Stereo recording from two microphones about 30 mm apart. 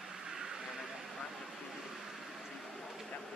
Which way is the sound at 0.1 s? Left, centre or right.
Right.